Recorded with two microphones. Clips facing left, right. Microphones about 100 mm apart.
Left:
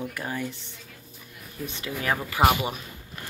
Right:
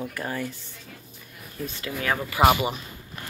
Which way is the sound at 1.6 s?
20° left (ahead or behind).